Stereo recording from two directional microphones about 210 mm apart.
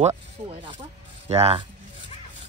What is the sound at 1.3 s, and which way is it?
Speech, 30° right (ahead or behind).